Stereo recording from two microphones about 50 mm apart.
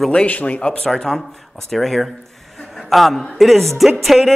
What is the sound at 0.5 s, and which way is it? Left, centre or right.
A woman's voice, centre.